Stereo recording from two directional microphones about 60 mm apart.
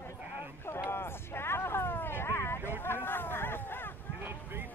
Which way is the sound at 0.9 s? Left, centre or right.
Left.